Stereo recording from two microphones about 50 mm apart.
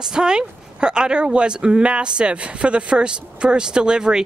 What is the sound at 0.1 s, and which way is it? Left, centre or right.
Speech, centre.